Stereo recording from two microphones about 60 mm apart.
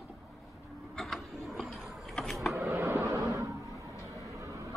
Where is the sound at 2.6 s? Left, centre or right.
Right.